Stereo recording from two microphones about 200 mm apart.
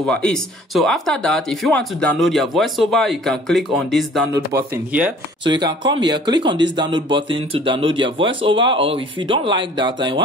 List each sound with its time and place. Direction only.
0.0 s speech: 5° left (ahead or behind)
4.3 s speech: 15° right (ahead or behind)
5.4 s speech: 20° right (ahead or behind)